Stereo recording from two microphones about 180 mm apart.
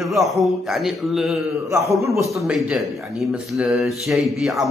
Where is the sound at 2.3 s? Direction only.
5° right (ahead or behind).